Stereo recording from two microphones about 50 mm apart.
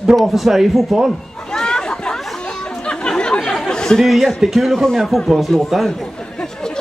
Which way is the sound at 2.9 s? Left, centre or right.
Centre.